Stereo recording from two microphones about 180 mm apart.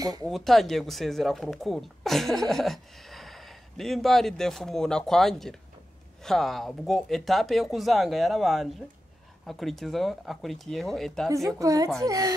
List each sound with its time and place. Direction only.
0.0 s a woman's voice: 20° right (ahead or behind)
0.3 s speech: centre (ahead or behind)
11.2 s a woman's voice: 20° right (ahead or behind)